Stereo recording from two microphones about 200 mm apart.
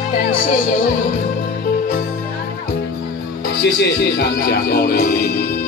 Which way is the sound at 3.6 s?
55° left (ahead or behind).